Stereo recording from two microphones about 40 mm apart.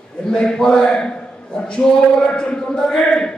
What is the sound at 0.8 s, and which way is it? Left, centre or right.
Chant, left.